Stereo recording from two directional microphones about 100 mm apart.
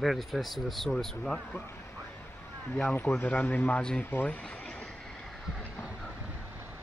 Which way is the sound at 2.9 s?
20° left (ahead or behind).